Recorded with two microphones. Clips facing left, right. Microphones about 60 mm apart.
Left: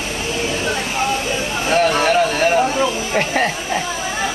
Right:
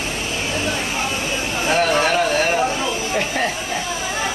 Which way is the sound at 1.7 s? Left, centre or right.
Centre.